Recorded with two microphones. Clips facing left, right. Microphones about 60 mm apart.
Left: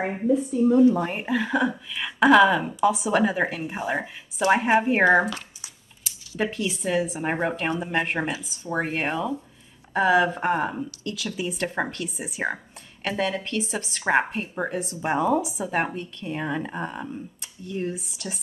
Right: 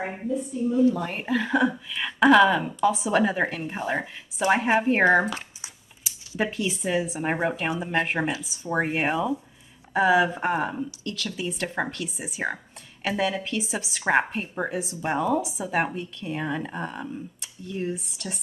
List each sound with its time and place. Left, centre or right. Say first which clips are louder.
0.0 s a woman's voice: left 6 dB; left
0.8 s speech: left 3 dB; left
1.1 s speech: even; centre
5.2 s a sound: even; right
6.3 s speech: even; centre
15.0 s speech: left 2 dB; centre